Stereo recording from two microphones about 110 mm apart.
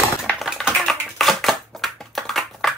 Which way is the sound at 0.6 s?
Centre (ahead or behind).